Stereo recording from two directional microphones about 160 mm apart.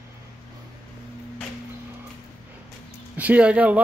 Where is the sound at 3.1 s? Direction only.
10° right (ahead or behind).